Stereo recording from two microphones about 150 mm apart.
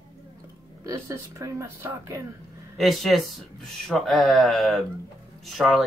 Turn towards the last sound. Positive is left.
turn(degrees=0)  # may be behind; listen again after turning